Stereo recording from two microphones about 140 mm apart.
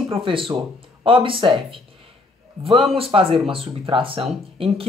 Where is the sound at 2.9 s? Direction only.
40° right (ahead or behind).